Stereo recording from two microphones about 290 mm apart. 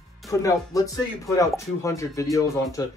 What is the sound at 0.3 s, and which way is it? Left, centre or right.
Speech, centre.